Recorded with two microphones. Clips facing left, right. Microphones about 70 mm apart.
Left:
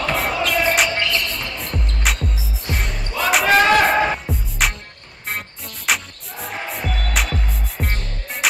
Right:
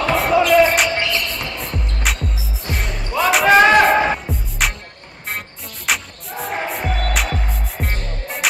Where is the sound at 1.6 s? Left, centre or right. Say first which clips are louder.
Right 1 dB; centre.